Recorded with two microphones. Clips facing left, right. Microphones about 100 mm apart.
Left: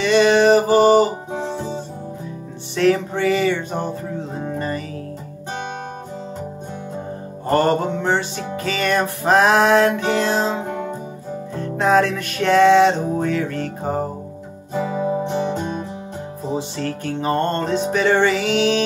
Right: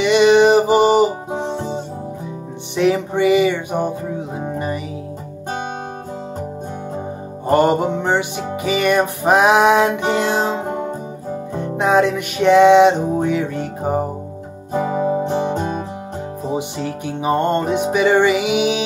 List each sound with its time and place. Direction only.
0.0 s music: 15° right (ahead or behind)
7.4 s music: 15° right (ahead or behind)
14.7 s music: 40° right (ahead or behind)
16.4 s music: 15° right (ahead or behind)